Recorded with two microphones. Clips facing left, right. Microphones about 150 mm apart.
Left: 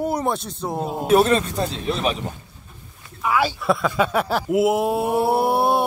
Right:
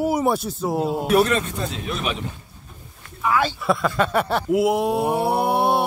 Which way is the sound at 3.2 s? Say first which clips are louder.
Even; 5° left (ahead or behind).